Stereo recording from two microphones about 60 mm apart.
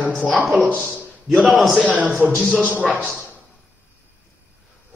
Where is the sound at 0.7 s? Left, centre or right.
Right.